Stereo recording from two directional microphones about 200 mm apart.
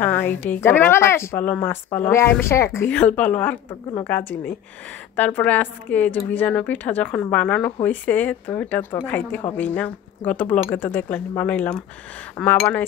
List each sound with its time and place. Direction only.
0.0 s a woman's voice: 10° left (ahead or behind)